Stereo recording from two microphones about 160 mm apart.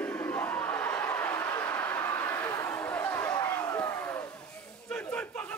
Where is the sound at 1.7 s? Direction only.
10° left (ahead or behind).